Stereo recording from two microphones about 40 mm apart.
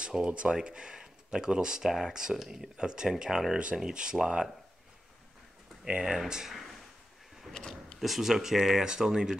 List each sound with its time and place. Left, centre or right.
0.3 s speech: right
1.8 s speech: centre
5.9 s speech: right
6.1 s speech: centre
7.5 s speech: centre
8.0 s speech: centre